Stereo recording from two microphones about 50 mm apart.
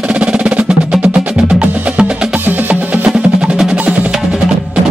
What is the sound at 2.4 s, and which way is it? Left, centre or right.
Music, right.